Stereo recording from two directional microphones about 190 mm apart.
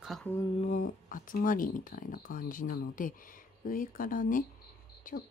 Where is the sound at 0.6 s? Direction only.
40° left (ahead or behind).